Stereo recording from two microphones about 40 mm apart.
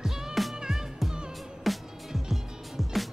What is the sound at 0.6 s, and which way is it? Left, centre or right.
Music, centre.